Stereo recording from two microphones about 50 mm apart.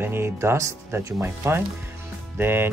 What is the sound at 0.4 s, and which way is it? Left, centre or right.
Speech, right.